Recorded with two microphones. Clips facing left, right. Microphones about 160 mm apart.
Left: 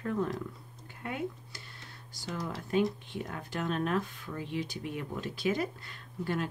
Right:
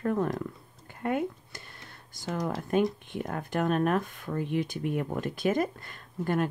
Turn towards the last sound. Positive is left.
turn(degrees=-50)  # may be behind; listen again after turning